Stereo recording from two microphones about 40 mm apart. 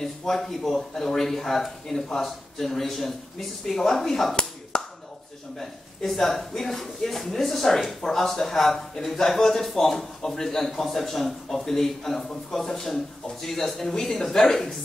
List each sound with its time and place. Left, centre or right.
0.0 s speech: centre
4.7 s a sound: left
5.6 s speech: centre